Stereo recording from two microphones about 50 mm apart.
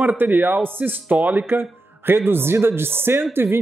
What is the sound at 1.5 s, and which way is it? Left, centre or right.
Speech, right.